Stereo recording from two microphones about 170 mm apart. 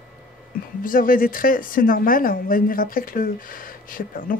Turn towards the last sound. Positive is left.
turn(degrees=55)  # may be behind; listen again after turning